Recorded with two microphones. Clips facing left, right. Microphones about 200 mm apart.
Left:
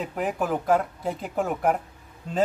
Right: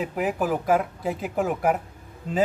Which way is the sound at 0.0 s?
5° right (ahead or behind).